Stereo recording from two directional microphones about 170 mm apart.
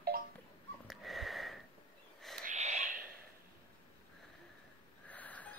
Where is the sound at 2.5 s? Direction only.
45° right (ahead or behind).